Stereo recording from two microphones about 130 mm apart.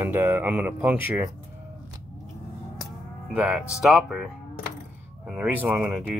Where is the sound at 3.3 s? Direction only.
10° right (ahead or behind).